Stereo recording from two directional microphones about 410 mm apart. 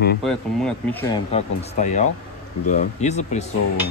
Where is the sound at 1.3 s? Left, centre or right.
Centre.